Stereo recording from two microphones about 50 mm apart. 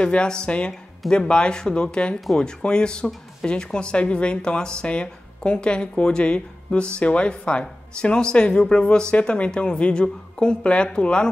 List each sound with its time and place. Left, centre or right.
0.0 s speech: left